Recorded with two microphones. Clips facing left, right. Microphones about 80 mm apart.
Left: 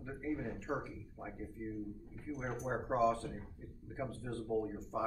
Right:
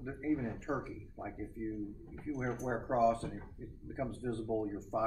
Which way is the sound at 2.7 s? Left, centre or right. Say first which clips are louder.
Right 2 dB; right.